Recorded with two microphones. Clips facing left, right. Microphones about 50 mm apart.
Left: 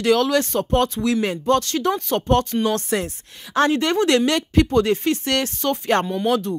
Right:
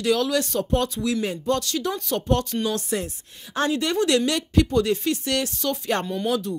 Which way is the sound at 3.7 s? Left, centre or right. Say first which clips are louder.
Left 3 dB; left.